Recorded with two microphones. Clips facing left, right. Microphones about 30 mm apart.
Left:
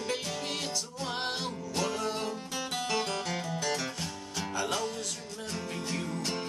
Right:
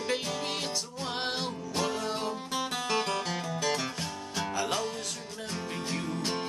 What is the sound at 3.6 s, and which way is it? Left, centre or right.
Music, right.